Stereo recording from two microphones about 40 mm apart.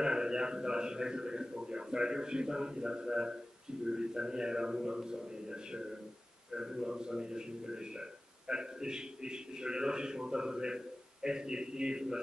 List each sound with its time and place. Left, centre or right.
0.0 s a man's voice: centre